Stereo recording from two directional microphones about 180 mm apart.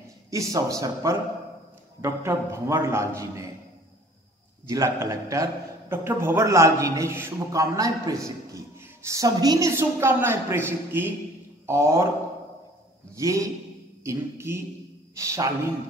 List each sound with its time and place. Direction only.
0.3 s a man's voice: 20° right (ahead or behind)
4.6 s a man's voice: 15° right (ahead or behind)
13.1 s a man's voice: 15° right (ahead or behind)